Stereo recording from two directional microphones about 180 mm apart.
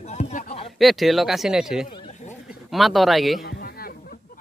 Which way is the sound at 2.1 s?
40° left (ahead or behind).